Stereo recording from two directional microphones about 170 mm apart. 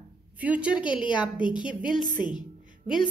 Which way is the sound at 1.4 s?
25° left (ahead or behind).